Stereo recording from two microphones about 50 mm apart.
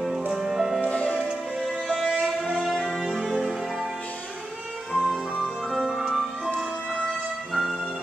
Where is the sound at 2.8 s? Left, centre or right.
Centre.